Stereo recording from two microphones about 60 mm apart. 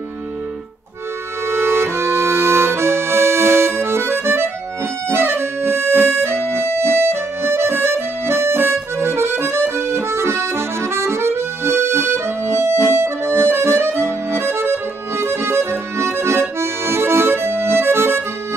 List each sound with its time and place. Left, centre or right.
1.5 s accordion: right